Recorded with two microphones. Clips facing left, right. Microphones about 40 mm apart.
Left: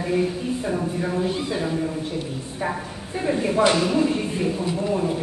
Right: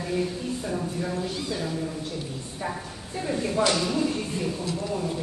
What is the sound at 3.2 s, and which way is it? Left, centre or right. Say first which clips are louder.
A woman's voice: left 5 dB; left.